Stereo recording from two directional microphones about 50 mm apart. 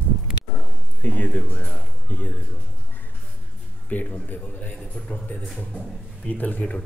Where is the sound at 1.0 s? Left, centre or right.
Left.